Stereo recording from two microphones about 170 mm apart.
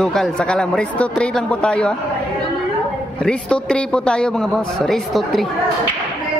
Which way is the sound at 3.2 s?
5° left (ahead or behind).